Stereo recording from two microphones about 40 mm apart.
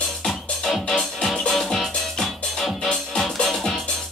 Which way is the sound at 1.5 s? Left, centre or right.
Centre.